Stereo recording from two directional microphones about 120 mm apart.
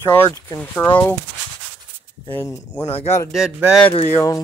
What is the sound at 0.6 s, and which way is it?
Speech, 15° left (ahead or behind).